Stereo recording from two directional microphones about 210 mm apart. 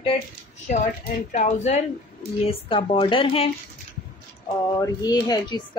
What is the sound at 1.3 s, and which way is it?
A woman's voice, 35° left (ahead or behind).